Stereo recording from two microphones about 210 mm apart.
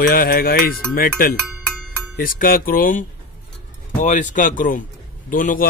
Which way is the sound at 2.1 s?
40° left (ahead or behind).